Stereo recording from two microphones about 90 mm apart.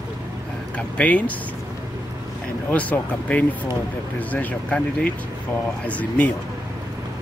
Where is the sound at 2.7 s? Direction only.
15° left (ahead or behind).